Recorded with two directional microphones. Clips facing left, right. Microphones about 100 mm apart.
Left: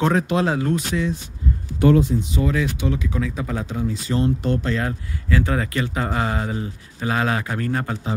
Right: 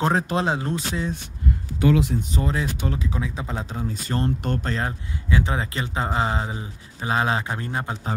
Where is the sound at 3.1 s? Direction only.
20° right (ahead or behind).